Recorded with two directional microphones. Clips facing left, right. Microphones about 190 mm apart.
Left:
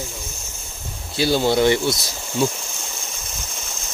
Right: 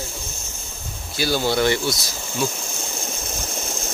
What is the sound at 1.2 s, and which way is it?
Speech, 20° left (ahead or behind).